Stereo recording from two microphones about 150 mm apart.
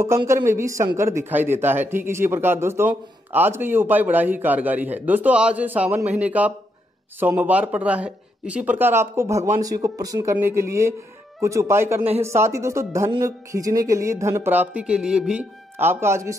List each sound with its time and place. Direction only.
0.3 s a man's voice: 20° right (ahead or behind)